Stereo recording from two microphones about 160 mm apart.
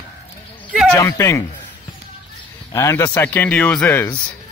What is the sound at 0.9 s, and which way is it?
Speech, 20° left (ahead or behind).